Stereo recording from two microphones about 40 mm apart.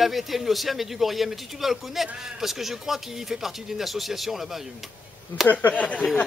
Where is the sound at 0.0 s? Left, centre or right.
Centre.